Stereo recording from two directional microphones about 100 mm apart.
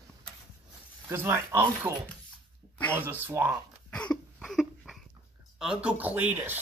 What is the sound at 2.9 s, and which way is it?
Speech, 20° right (ahead or behind).